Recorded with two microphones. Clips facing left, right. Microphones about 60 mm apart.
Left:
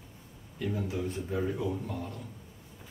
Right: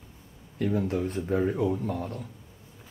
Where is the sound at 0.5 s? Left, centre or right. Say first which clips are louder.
Right 6 dB; right.